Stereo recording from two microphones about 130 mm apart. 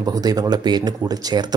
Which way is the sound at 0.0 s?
30° right (ahead or behind).